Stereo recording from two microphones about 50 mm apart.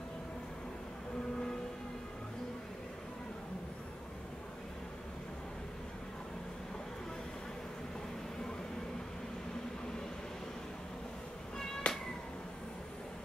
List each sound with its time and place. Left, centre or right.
11.9 s cat: centre